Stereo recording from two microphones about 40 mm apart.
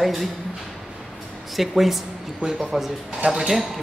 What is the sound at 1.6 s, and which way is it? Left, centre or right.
Speech, centre.